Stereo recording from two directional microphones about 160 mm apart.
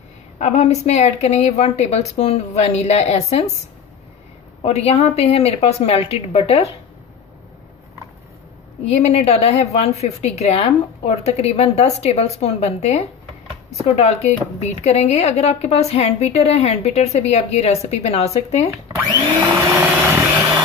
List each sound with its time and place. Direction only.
0.4 s a woman's voice: 45° left (ahead or behind)
4.6 s a woman's voice: 40° left (ahead or behind)
8.9 s a woman's voice: 40° left (ahead or behind)
18.9 s vacuum cleaner: 20° right (ahead or behind)